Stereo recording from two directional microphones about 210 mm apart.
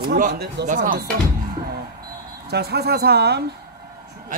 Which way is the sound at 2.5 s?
50° right (ahead or behind).